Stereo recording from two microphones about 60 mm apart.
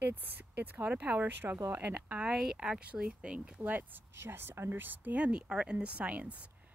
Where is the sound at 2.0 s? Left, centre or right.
Centre.